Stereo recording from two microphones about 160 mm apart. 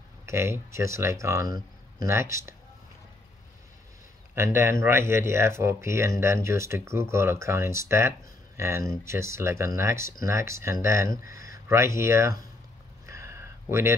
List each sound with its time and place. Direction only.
0.3 s speech: 15° right (ahead or behind)
4.4 s speech: 15° right (ahead or behind)
13.0 s a sound: 15° right (ahead or behind)